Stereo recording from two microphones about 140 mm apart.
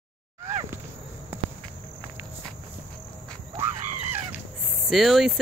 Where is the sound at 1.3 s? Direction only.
15° right (ahead or behind).